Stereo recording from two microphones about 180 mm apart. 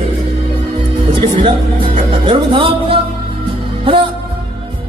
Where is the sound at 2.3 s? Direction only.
30° right (ahead or behind).